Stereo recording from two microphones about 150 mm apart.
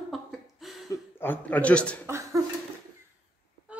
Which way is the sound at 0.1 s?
Centre (ahead or behind).